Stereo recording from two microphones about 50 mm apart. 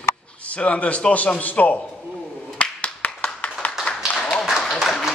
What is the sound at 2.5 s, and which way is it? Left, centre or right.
Clapping, left.